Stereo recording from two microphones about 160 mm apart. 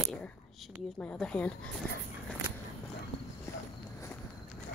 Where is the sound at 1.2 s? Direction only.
5° left (ahead or behind).